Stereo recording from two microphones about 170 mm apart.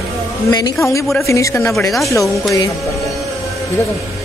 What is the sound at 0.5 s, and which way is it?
A woman's voice, 20° left (ahead or behind).